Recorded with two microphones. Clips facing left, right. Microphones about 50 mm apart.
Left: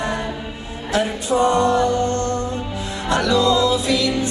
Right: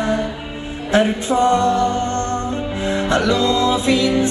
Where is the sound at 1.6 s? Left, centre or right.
Left.